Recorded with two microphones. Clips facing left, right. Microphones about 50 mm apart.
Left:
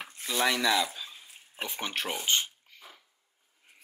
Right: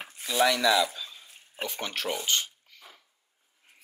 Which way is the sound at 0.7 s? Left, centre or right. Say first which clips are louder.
Right 3 dB; centre.